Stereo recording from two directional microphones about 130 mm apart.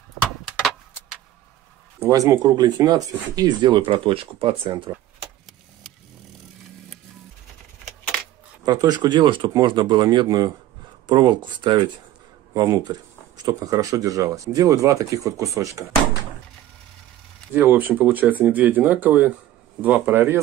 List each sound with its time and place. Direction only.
0.5 s a sound: centre (ahead or behind)
2.0 s speech: 25° right (ahead or behind); by 4.9 s 40° right (ahead or behind)
8.6 s speech: 30° right (ahead or behind)
17.6 s speech: 15° right (ahead or behind)